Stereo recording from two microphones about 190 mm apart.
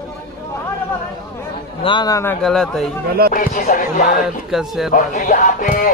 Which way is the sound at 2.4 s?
Centre (ahead or behind).